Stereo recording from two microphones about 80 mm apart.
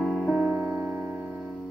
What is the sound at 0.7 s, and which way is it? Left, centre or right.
Music, right.